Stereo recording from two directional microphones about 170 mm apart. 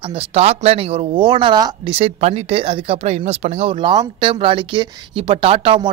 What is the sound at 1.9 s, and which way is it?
Speech, 35° right (ahead or behind).